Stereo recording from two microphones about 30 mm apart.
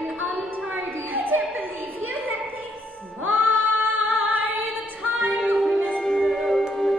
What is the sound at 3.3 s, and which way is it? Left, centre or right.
Female singing, right.